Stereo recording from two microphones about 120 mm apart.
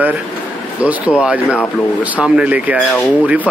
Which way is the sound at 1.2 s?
10° right (ahead or behind).